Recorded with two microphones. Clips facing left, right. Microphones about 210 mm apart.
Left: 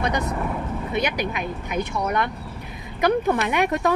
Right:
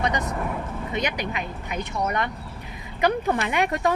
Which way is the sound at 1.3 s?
60° left (ahead or behind).